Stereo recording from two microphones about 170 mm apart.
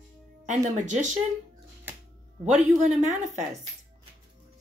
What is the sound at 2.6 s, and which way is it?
Speech, 45° right (ahead or behind).